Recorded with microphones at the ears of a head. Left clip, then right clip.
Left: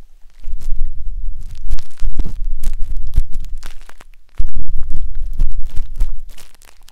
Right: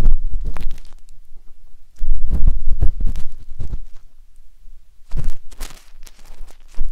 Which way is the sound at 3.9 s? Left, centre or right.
Left.